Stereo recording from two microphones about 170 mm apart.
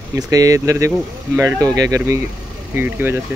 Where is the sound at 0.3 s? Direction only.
20° right (ahead or behind).